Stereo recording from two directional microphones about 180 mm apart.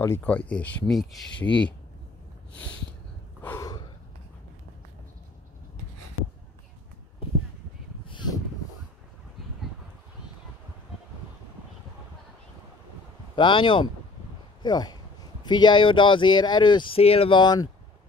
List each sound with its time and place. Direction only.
0.0 s speech: 10° left (ahead or behind)
3.4 s gasp: 20° left (ahead or behind)
13.4 s speech: 25° left (ahead or behind)